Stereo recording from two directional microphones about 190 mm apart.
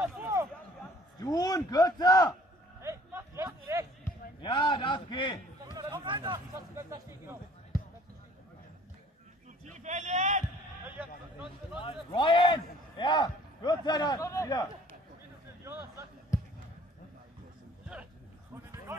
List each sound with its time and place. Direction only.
0.0 s a sound: 10° right (ahead or behind)
1.2 s a man's voice: 20° left (ahead or behind)
2.8 s a sound: 15° right (ahead or behind)
4.4 s a man's voice: 20° left (ahead or behind)
5.6 s speech: 20° right (ahead or behind)
6.7 s a man's voice: 15° right (ahead or behind)
9.7 s speech: 40° right (ahead or behind)
11.0 s a man's voice: 5° right (ahead or behind)
11.8 s a man's voice: 30° left (ahead or behind)
15.6 s a sound: 15° right (ahead or behind)
18.9 s a man's voice: 15° right (ahead or behind)